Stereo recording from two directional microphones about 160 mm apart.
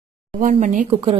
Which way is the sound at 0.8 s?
35° right (ahead or behind).